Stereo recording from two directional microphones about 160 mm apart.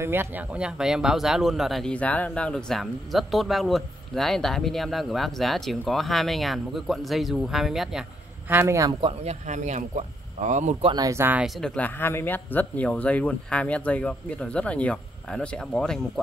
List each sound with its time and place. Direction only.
0.0 s speech: 15° right (ahead or behind)
8.5 s speech: 15° right (ahead or behind)
9.0 s speech: 40° right (ahead or behind)
10.9 s speech: 20° right (ahead or behind)
11.4 s speech: centre (ahead or behind)